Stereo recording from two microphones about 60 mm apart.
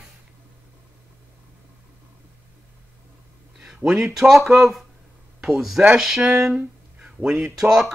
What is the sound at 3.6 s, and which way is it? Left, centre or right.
Speech, centre.